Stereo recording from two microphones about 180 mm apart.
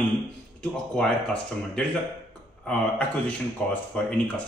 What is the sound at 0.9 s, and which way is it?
Speech, 5° left (ahead or behind).